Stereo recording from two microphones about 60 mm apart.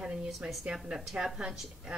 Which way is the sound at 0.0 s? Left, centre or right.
Centre.